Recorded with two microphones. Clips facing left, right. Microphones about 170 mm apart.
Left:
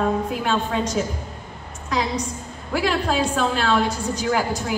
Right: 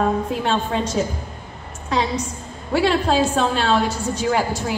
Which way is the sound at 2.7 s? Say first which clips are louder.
Right 4 dB; 30° right (ahead or behind).